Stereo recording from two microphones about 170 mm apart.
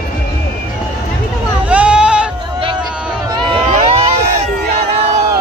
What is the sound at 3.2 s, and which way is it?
Crowd, 30° right (ahead or behind).